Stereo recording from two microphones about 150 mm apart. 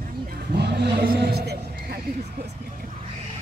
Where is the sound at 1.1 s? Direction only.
90° right.